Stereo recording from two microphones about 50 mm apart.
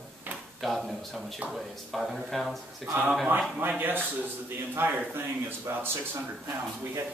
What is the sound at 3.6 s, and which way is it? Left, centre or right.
Speech, right.